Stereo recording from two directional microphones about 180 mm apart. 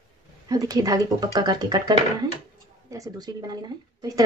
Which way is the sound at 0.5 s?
20° right (ahead or behind).